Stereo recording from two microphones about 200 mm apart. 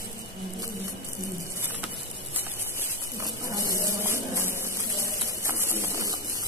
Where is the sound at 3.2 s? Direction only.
15° right (ahead or behind).